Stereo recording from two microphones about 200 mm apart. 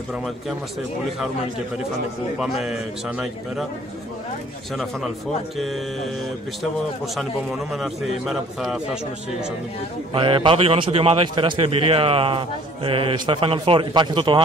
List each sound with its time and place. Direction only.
2.3 s a man's voice: centre (ahead or behind)
7.2 s a man's voice: centre (ahead or behind)
10.1 s a man's voice: 25° right (ahead or behind)